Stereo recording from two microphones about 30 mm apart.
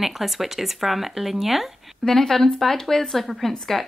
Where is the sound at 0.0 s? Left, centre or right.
Centre.